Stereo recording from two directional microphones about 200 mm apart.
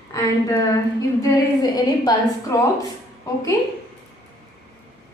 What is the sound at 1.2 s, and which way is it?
Speech, 20° left (ahead or behind).